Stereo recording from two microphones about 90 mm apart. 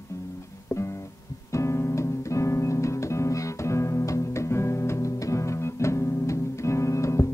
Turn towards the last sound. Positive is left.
turn(degrees=35)  # may be behind; listen again after turning